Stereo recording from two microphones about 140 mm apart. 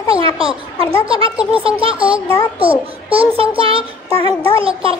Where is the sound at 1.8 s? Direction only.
40° right (ahead or behind).